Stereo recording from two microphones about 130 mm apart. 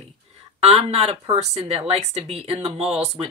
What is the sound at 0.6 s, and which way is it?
A woman's voice, 50° right (ahead or behind).